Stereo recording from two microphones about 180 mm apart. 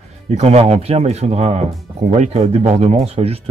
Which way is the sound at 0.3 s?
35° right (ahead or behind).